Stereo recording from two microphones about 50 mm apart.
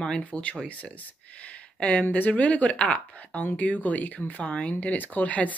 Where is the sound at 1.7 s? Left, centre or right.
Left.